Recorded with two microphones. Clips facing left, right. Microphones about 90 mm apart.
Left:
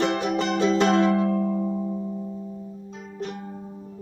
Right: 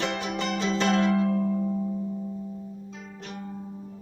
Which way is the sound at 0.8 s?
35° left (ahead or behind).